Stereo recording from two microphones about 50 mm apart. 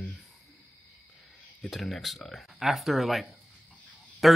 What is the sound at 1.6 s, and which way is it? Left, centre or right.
Speech, centre.